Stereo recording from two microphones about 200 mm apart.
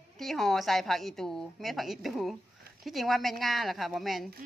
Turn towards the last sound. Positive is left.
turn(degrees=0)  # may be behind; listen again after turning